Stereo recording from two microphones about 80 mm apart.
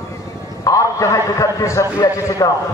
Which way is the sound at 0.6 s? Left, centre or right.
Left.